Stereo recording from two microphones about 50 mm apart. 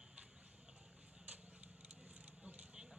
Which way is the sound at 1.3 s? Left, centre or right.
Right.